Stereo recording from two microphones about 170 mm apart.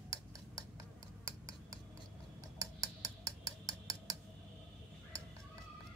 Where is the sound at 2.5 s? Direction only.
15° right (ahead or behind).